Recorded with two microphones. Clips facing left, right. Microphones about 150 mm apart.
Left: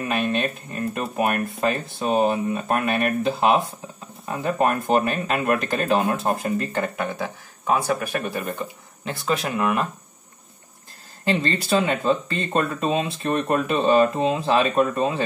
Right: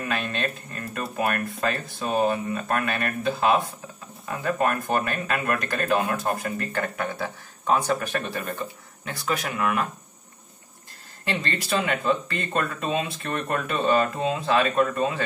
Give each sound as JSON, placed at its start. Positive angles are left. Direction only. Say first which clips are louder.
{"t": 0.0, "sound": "speech", "louder": "left 5 dB", "side_deg": 20}
{"t": 9.0, "sound": "speech", "louder": "left 4 dB", "side_deg": 25}
{"t": 11.2, "sound": "speech", "louder": "left 6 dB", "side_deg": 30}